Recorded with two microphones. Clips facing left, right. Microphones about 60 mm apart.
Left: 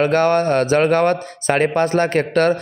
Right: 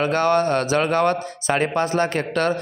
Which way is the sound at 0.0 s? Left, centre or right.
Left.